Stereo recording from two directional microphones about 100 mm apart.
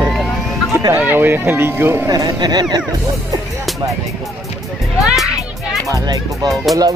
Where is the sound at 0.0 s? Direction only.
Centre (ahead or behind).